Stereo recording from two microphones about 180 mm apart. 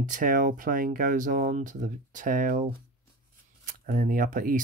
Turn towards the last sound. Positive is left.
turn(degrees=-50)  # may be behind; listen again after turning